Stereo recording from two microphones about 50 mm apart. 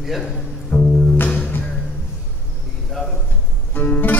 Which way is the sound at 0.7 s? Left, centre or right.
Left.